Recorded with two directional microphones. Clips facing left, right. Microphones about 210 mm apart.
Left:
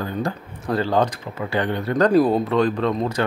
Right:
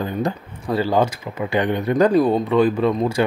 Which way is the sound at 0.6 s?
5° right (ahead or behind).